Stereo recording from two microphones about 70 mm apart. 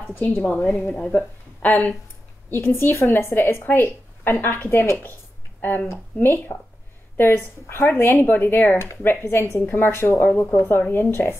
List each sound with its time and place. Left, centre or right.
0.1 s a woman's voice: left